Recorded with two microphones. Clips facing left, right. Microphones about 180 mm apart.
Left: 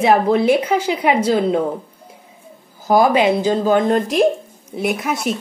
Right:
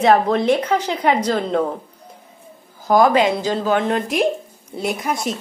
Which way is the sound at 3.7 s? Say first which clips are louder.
Left 4 dB; 40° left (ahead or behind).